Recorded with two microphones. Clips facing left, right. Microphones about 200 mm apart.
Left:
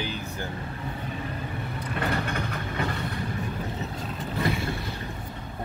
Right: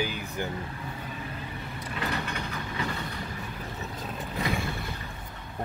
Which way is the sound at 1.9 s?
50° left (ahead or behind).